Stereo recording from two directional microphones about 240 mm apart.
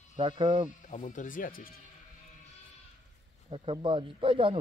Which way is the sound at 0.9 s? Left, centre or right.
Left.